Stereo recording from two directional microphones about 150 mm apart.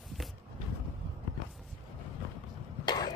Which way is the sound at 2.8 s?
25° left (ahead or behind).